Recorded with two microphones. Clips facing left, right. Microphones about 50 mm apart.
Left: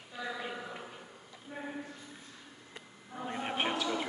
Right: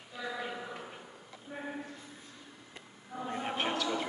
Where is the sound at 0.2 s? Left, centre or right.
Centre.